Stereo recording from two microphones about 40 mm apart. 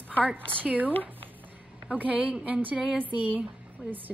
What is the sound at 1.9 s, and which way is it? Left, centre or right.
A woman's voice, right.